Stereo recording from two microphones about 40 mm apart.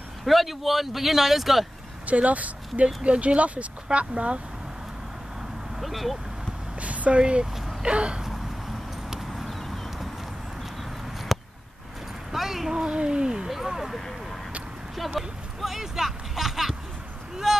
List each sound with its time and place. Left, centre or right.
0.2 s speech: centre
2.0 s speech: right
5.8 s speech: centre
6.8 s a sound: right
7.2 s speech: right
9.4 s a sound: centre
11.3 s a sound: centre
12.7 s speech: right
13.5 s speech: centre
13.9 s vehicle: centre
15.1 s a sound: centre
17.4 s speech: centre